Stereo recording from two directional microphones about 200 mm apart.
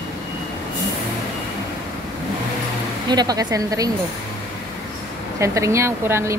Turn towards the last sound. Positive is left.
turn(degrees=-15)  # may be behind; listen again after turning